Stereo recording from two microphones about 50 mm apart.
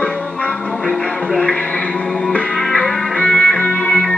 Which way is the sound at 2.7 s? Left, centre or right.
Centre.